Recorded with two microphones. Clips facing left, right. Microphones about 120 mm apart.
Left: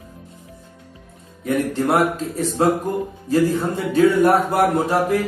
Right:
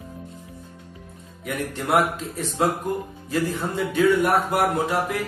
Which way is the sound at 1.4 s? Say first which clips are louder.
Left 8 dB; 35° left (ahead or behind).